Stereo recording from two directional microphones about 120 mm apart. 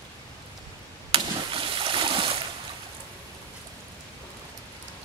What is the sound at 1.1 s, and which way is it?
Splash, 45° right (ahead or behind).